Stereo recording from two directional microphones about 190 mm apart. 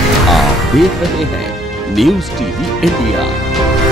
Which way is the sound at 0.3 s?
Centre (ahead or behind).